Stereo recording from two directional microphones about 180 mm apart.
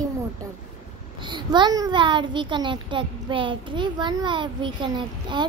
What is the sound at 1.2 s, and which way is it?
A child's voice, 25° right (ahead or behind).